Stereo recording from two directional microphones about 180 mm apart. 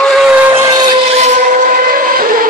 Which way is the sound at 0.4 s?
15° right (ahead or behind).